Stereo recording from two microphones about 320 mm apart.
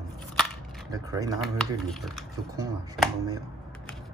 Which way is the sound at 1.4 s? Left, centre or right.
Centre.